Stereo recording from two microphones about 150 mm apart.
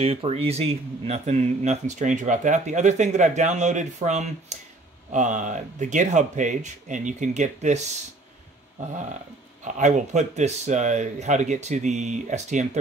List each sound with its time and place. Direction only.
0.0 s speech: 40° right (ahead or behind)
9.8 s speech: 55° right (ahead or behind)